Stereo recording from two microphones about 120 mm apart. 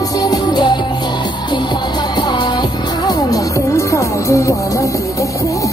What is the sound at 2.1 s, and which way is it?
Music, 35° left (ahead or behind).